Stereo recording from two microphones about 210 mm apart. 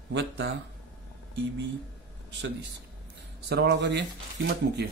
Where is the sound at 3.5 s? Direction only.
55° right (ahead or behind).